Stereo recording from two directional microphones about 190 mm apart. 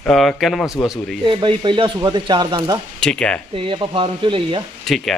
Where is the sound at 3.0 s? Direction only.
5° left (ahead or behind).